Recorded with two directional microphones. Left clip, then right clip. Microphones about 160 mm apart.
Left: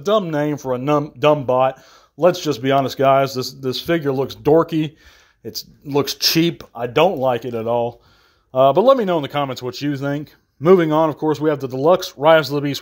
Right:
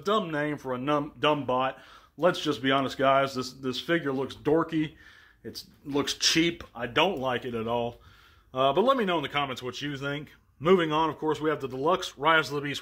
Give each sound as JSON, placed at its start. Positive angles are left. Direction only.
{"t": 0.0, "sound": "speech", "side_deg": 45}
{"t": 5.4, "sound": "speech", "side_deg": 40}